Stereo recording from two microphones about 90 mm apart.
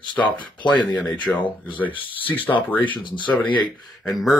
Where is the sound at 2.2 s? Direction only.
20° left (ahead or behind).